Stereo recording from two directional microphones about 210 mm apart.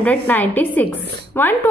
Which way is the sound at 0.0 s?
10° left (ahead or behind).